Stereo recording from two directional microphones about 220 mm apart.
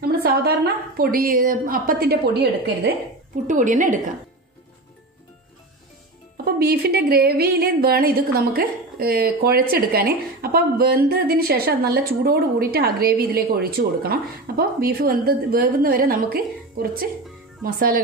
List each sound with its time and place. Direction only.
0.0 s speech: 45° right (ahead or behind)
3.4 s a woman's voice: 35° right (ahead or behind)
6.3 s a woman's voice: 45° right (ahead or behind)